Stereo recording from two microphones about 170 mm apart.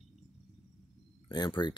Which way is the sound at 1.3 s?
25° left (ahead or behind).